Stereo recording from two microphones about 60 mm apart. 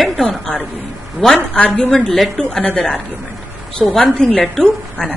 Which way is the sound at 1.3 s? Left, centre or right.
Left.